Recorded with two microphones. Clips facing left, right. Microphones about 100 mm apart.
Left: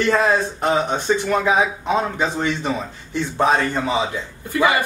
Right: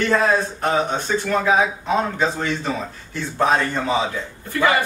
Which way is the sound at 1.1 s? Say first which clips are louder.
Even; 15° left (ahead or behind).